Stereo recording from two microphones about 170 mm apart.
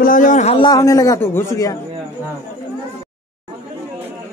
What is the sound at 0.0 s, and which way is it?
Speech, 50° left (ahead or behind).